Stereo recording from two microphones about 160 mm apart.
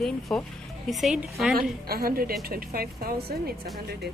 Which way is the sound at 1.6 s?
70° right (ahead or behind).